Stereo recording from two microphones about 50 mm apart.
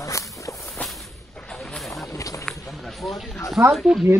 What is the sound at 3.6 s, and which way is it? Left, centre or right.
Speech, centre.